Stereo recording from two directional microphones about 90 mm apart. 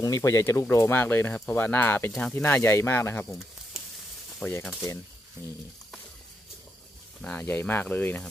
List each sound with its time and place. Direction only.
0.0 s speech: 40° left (ahead or behind)
4.4 s speech: 20° left (ahead or behind)
7.2 s speech: 15° left (ahead or behind)